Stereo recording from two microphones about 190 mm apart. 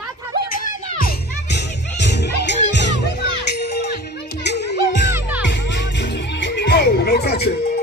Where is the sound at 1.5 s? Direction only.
65° left (ahead or behind).